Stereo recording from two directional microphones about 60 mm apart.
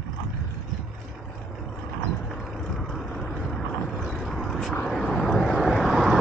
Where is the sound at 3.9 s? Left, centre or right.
Centre.